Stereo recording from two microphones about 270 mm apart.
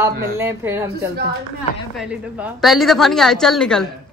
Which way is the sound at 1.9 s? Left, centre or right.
Centre.